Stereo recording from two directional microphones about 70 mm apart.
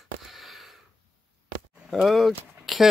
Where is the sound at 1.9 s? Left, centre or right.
Centre.